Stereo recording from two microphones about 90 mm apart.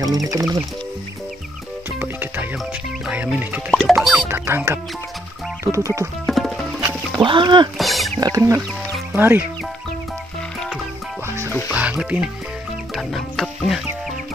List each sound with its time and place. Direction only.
0.0 s music: 40° right (ahead or behind)
3.7 s music: centre (ahead or behind)
4.3 s music: 25° right (ahead or behind)
6.2 s music: 5° left (ahead or behind)
7.2 s speech: 60° right (ahead or behind)
7.7 s music: centre (ahead or behind)
8.2 s music: 40° right (ahead or behind)
9.1 s speech: 20° right (ahead or behind)
11.2 s music: 30° right (ahead or behind)
11.7 s speech: 15° right (ahead or behind)
12.9 s music: centre (ahead or behind)